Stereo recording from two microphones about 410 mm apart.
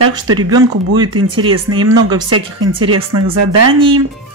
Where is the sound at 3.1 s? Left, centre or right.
Right.